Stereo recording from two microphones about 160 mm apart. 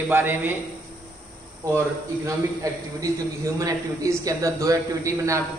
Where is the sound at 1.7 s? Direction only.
20° right (ahead or behind).